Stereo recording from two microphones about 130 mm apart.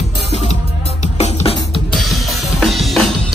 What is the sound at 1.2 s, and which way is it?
Music, 50° left (ahead or behind).